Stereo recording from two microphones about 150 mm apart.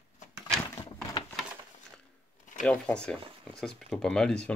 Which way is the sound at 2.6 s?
5° left (ahead or behind).